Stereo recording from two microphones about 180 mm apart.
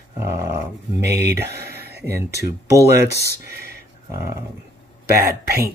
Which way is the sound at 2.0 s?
15° right (ahead or behind).